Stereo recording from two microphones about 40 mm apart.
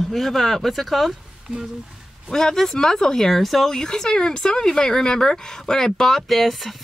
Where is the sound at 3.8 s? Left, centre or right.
Centre.